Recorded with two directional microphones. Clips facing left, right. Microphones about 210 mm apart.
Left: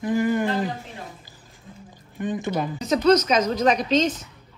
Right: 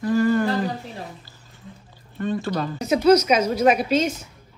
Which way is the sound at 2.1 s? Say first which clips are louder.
Right 1 dB; 15° left (ahead or behind).